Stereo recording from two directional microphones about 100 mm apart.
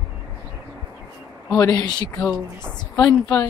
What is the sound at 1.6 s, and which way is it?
Speech, 40° left (ahead or behind).